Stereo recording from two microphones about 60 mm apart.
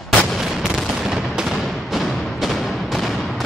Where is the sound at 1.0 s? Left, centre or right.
Centre.